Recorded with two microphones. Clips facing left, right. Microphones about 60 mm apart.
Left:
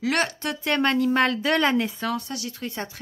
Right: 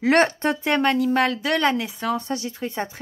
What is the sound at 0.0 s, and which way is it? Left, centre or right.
Speech, right.